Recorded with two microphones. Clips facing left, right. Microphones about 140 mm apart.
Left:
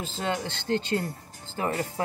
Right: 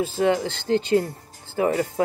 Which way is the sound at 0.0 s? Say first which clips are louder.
Right 9 dB; 15° right (ahead or behind).